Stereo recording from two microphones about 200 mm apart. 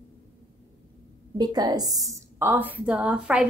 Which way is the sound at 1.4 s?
20° right (ahead or behind).